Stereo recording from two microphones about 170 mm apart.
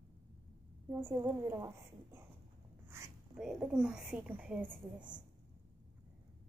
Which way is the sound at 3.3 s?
5° right (ahead or behind).